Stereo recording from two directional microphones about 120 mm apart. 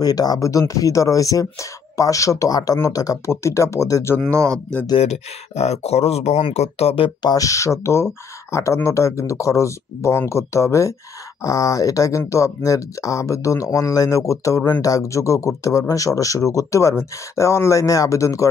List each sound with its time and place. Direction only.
0.0 s speech: 30° left (ahead or behind)
4.3 s speech: 25° right (ahead or behind)
4.9 s speech: 65° left (ahead or behind)
7.2 s speech: 30° left (ahead or behind)